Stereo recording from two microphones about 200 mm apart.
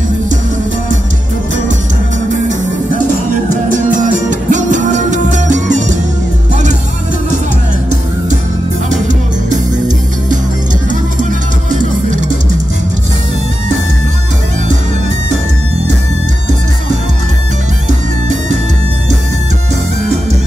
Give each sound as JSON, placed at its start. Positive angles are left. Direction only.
{"t": 3.7, "sound": "music", "side_deg": -40}
{"t": 8.9, "sound": "music", "side_deg": -35}
{"t": 11.7, "sound": "music", "side_deg": -40}